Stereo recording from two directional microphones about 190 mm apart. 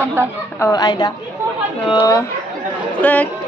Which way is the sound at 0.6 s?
20° left (ahead or behind).